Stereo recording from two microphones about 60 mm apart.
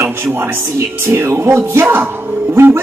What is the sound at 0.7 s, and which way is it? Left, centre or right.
Speech, right.